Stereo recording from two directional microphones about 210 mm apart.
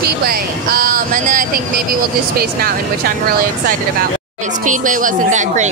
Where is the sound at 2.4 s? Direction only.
45° right (ahead or behind).